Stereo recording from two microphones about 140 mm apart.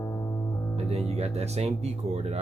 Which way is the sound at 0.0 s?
20° left (ahead or behind).